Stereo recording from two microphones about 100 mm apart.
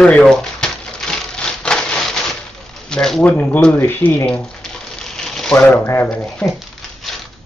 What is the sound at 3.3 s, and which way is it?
Speech, 15° left (ahead or behind).